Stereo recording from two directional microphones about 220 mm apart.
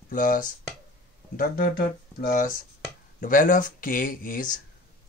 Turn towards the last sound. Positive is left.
turn(degrees=40)  # may be behind; listen again after turning